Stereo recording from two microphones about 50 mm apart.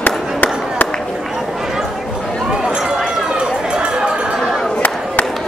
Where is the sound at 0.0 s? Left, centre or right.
Left.